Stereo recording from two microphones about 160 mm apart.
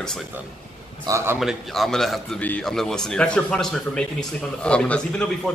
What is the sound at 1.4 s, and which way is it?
A man's voice, centre (ahead or behind).